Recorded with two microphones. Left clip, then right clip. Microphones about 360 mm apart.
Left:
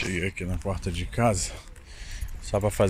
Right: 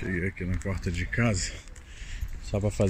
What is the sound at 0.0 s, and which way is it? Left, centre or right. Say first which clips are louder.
Speech: left 3 dB; left.